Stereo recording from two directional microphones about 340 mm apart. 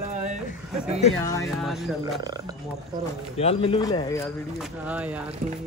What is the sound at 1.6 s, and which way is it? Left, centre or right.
Speech, centre.